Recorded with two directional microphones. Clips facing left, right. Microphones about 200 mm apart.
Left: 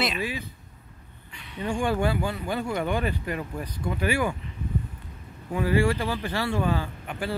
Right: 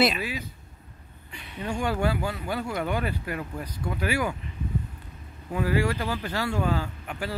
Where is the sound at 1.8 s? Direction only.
10° right (ahead or behind).